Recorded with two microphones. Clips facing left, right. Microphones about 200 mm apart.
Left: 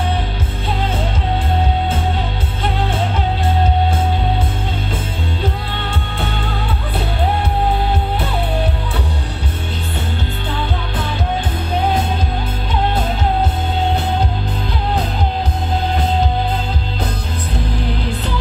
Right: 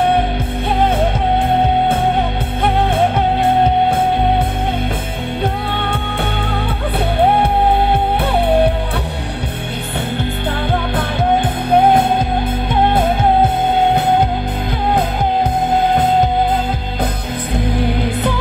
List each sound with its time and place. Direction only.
0.7 s music: 60° right (ahead or behind)
5.4 s music: 55° right (ahead or behind)
7.2 s music: 55° right (ahead or behind)
10.5 s music: 55° right (ahead or behind)